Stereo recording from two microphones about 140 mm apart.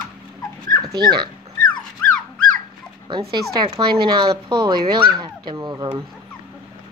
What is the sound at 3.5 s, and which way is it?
Speech, 35° right (ahead or behind).